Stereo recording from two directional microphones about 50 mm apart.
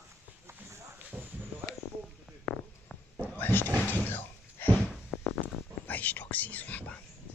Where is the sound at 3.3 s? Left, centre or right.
Left.